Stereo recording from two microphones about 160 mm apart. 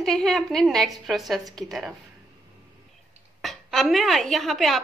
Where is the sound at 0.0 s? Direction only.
Centre (ahead or behind).